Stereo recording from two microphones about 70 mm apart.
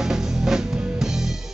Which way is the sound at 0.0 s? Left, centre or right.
Centre.